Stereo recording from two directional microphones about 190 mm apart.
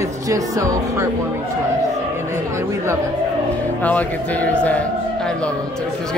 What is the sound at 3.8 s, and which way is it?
Speech, 10° left (ahead or behind).